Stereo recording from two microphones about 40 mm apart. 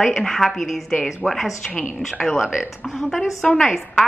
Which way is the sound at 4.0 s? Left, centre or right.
Centre.